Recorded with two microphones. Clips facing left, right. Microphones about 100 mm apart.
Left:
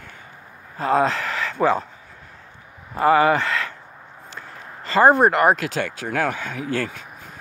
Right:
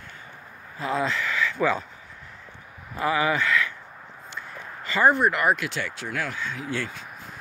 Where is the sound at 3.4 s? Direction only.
30° left (ahead or behind).